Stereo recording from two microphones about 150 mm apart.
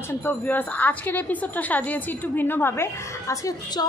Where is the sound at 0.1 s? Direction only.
10° left (ahead or behind).